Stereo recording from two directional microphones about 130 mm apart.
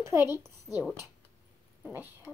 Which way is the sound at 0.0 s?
20° right (ahead or behind).